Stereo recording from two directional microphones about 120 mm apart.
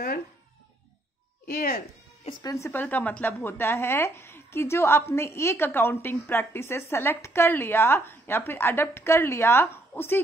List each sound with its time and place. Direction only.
2.4 s speech: 25° left (ahead or behind)